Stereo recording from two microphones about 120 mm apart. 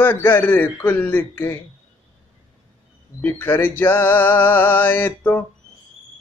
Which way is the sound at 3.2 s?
15° left (ahead or behind).